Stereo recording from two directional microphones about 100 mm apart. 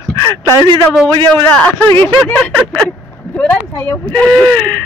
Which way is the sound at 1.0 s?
20° left (ahead or behind).